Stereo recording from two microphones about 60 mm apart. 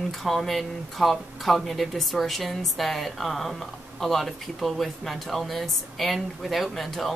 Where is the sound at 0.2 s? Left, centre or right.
Centre.